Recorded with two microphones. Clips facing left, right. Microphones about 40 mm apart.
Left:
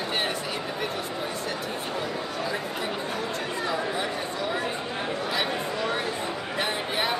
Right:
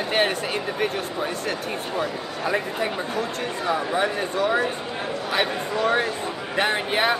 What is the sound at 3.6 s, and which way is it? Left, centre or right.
Speech, right.